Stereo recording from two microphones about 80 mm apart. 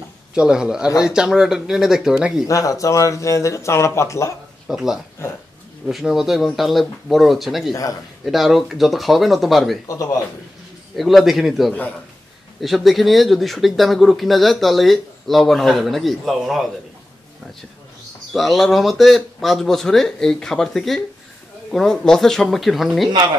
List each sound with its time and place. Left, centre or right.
0.3 s speech: centre
2.4 s speech: left
4.6 s speech: centre
9.8 s speech: left
11.0 s speech: centre
18.3 s speech: centre